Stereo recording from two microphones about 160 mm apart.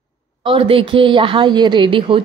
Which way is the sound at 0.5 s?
35° right (ahead or behind).